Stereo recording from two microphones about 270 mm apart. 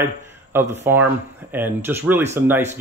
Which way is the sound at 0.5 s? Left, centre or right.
Centre.